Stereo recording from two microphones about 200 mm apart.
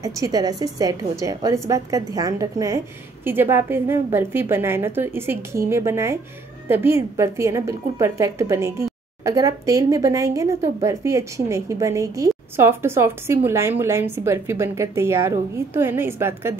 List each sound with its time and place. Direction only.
0.0 s a woman's voice: 15° right (ahead or behind)